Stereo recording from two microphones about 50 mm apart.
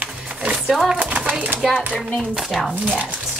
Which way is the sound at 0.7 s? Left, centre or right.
Centre.